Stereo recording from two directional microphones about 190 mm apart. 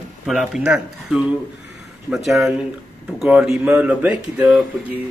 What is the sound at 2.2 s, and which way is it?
Speech, centre (ahead or behind).